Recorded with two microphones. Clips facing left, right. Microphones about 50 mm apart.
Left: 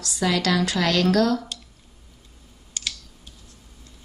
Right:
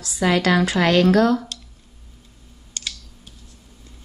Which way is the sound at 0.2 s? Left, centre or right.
Right.